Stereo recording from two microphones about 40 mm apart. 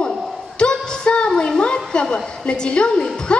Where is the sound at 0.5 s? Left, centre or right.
Left.